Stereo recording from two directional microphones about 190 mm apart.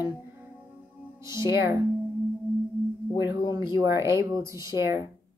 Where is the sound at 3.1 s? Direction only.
15° right (ahead or behind).